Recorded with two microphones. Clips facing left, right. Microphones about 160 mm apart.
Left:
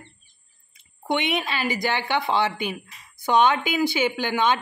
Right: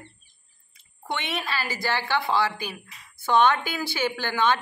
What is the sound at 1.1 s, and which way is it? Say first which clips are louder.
Speech: left 5 dB; 20° left (ahead or behind).